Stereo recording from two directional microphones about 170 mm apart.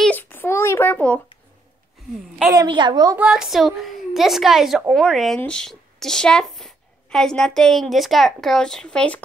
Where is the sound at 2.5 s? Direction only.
25° right (ahead or behind).